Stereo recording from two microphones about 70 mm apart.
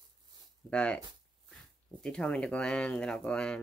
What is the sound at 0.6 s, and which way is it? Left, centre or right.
Speech, centre.